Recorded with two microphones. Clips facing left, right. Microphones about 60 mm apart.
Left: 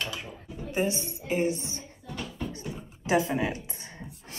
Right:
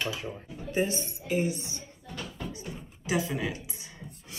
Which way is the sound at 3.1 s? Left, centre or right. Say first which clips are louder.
Left 4 dB; left.